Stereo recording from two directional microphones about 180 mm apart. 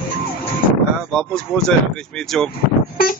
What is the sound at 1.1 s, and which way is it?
Speech, centre (ahead or behind).